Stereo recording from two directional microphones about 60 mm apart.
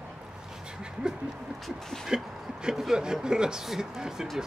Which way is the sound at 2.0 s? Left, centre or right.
Centre.